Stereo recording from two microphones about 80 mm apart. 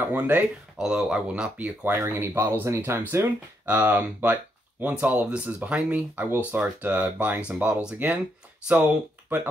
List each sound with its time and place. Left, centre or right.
0.0 s speech: right
0.7 s speech: centre